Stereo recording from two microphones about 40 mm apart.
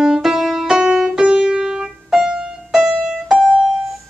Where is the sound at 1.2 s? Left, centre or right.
Right.